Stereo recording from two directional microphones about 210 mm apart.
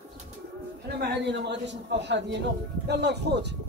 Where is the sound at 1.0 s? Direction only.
55° right (ahead or behind).